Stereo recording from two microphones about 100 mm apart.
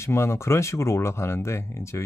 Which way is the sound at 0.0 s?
25° left (ahead or behind).